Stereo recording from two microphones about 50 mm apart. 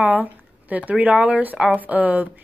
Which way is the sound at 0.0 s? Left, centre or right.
Right.